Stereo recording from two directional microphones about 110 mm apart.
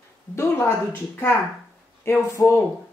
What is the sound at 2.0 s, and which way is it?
Speech, 25° left (ahead or behind).